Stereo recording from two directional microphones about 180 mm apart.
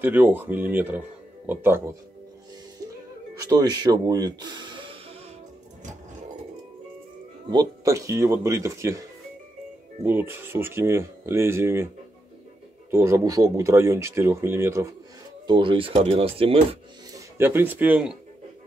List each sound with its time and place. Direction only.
0.0 s speech: 10° right (ahead or behind)
2.8 s music: 20° right (ahead or behind)
3.3 s speech: 20° right (ahead or behind)
7.4 s speech: 20° right (ahead or behind)
10.0 s speech: 10° right (ahead or behind)
12.9 s speech: 15° right (ahead or behind)
15.4 s speech: 25° right (ahead or behind)
17.4 s speech: 10° right (ahead or behind)